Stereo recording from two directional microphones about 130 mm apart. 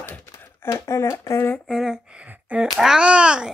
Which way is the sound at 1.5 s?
Centre (ahead or behind).